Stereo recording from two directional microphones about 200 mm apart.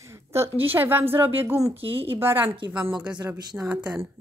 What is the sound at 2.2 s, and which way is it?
Speech, 10° right (ahead or behind).